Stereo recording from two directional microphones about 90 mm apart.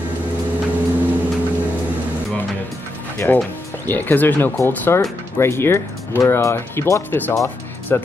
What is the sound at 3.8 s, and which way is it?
Speech, 20° left (ahead or behind).